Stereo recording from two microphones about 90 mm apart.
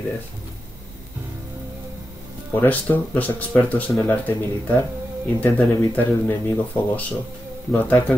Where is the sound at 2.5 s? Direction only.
20° left (ahead or behind).